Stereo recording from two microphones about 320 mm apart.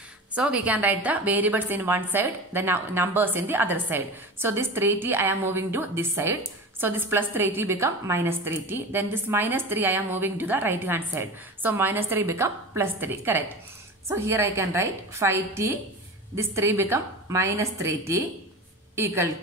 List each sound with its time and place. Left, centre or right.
0.3 s a woman's voice: centre